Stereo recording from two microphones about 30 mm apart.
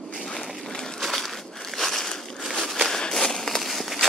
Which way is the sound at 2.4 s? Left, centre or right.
Centre.